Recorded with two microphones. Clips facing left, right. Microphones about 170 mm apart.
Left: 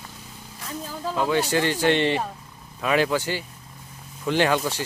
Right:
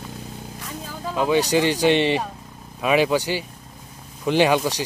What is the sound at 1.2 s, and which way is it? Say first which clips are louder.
A man's voice: right 4 dB; 15° right (ahead or behind).